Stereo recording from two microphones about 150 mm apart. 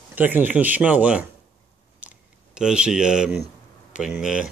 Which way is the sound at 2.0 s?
10° right (ahead or behind).